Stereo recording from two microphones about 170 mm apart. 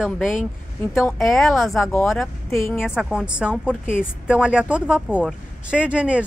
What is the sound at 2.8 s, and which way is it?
A woman's voice, 5° right (ahead or behind).